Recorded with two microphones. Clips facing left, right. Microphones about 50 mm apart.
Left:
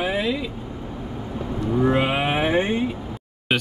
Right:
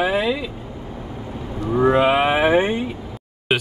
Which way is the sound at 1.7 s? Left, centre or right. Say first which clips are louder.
Right 5 dB; right.